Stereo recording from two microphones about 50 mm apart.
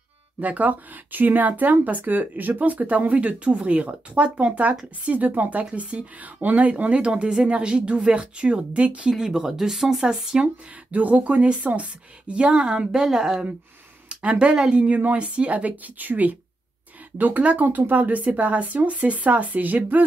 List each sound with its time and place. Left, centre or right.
0.4 s speech: right
9.2 s speech: centre
10.9 s speech: right; by 13.5 s centre
14.0 s speech: right